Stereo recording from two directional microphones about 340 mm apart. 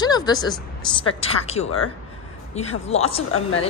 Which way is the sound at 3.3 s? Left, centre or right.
Left.